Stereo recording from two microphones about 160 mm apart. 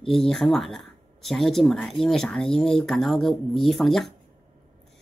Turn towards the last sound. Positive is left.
turn(degrees=0)  # may be behind; listen again after turning